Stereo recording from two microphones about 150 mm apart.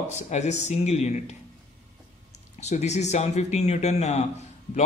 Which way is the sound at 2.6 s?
50° left (ahead or behind).